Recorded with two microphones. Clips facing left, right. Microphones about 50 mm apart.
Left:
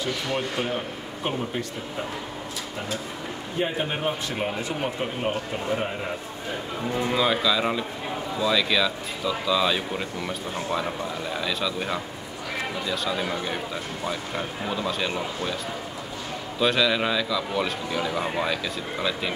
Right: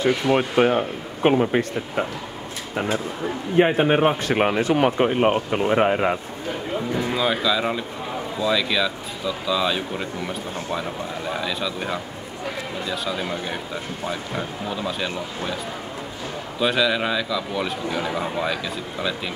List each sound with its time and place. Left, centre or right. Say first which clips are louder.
0.0 s speech: right 8 dB; right
3.5 s speech: right 10 dB; right
5.3 s speech: right 7 dB; right
7.1 s speech: even; centre
14.8 s speech: even; centre
16.5 s speech: right 1 dB; centre
17.9 s speech: even; centre
18.4 s speech: right 1 dB; centre